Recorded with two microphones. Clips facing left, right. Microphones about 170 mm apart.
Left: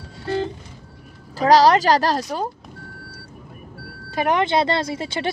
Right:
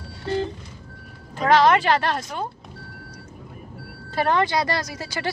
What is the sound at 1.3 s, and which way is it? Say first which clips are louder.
Speech: left 3 dB; 35° left (ahead or behind).